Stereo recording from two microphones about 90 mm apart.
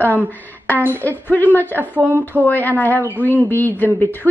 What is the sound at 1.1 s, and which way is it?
Speech, 20° left (ahead or behind).